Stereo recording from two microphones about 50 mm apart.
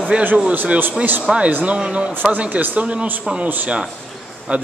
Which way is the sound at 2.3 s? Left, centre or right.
Right.